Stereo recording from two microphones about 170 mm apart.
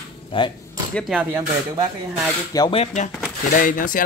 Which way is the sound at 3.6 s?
50° left (ahead or behind).